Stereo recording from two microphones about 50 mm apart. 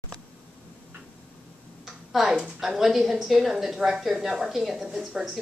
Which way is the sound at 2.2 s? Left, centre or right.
Centre.